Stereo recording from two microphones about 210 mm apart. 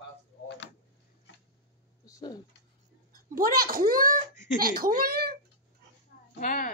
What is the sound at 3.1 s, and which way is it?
Speech, 45° right (ahead or behind).